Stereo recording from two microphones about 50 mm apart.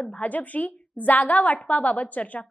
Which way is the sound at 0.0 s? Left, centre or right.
Left.